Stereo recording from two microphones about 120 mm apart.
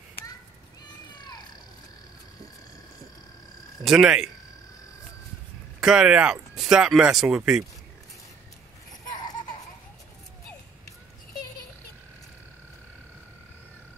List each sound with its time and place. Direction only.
1.1 s a sound: 35° left (ahead or behind)
3.8 s speech: 5° right (ahead or behind)
5.8 s speech: 5° right (ahead or behind)